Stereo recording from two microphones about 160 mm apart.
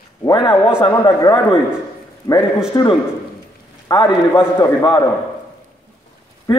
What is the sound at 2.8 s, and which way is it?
A man's voice, 25° left (ahead or behind).